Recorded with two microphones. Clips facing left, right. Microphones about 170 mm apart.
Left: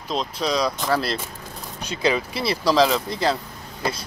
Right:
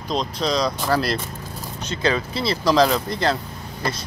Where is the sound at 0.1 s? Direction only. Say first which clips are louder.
Right 1 dB; 5° left (ahead or behind).